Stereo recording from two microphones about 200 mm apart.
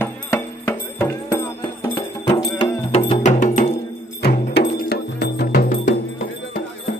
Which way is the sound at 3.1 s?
35° left (ahead or behind).